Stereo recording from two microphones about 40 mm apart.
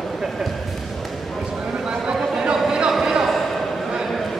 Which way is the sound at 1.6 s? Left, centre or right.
Centre.